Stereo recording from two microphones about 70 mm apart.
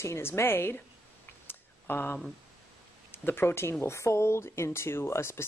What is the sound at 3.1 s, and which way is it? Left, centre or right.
Speech, left.